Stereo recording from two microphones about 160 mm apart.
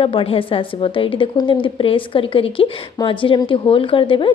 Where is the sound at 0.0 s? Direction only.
35° left (ahead or behind).